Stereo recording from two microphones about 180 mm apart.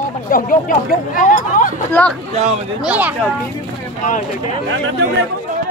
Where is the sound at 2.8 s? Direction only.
10° right (ahead or behind).